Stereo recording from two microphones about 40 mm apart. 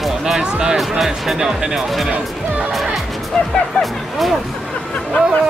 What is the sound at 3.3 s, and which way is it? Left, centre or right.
Speech, centre.